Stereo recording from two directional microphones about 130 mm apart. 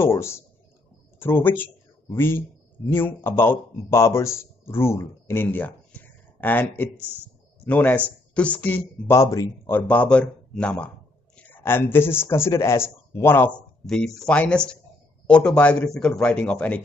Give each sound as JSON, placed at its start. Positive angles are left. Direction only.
{"t": 0.0, "sound": "a man's voice", "side_deg": 20}
{"t": 7.0, "sound": "speech", "side_deg": -15}
{"t": 7.6, "sound": "a man's voice", "side_deg": 10}
{"t": 9.8, "sound": "a man's voice", "side_deg": 10}
{"t": 13.8, "sound": "a man's voice", "side_deg": 5}